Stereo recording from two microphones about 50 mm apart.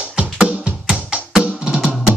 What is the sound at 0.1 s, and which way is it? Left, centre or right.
Music, right.